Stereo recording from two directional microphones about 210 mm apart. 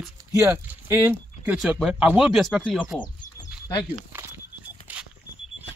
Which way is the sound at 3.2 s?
15° left (ahead or behind).